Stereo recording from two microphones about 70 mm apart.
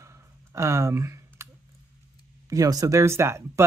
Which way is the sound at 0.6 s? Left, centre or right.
Right.